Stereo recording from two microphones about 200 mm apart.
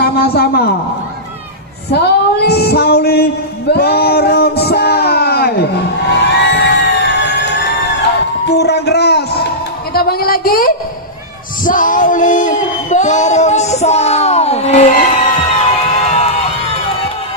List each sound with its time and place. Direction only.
0.0 s a man's voice: 50° left (ahead or behind)
1.9 s female singing: 55° left (ahead or behind)
6.3 s music: 60° left (ahead or behind)
9.9 s a sound: 50° left (ahead or behind)
15.9 s crowd: 35° left (ahead or behind)